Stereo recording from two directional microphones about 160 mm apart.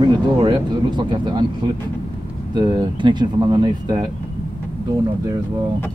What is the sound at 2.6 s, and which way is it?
Speech, 25° right (ahead or behind).